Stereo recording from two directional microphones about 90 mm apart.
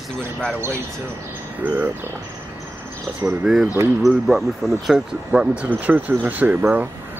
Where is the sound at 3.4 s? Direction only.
5° right (ahead or behind).